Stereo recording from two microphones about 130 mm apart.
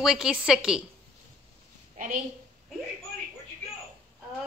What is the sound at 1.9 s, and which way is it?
Speech, 90° right.